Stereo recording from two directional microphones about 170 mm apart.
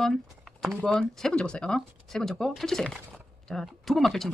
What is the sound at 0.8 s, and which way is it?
Speech, 5° left (ahead or behind).